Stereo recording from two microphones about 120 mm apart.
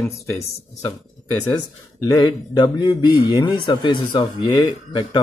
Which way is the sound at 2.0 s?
35° left (ahead or behind).